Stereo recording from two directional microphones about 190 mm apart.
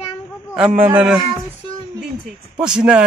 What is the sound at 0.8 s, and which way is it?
Speech, 5° right (ahead or behind).